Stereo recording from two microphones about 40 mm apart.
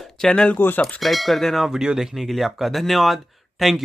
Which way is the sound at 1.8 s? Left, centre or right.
Right.